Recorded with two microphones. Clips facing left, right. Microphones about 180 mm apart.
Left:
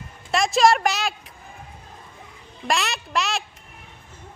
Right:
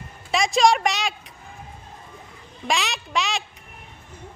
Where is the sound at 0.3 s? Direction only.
Centre (ahead or behind).